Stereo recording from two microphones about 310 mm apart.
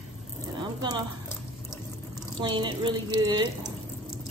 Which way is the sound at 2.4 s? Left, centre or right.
Centre.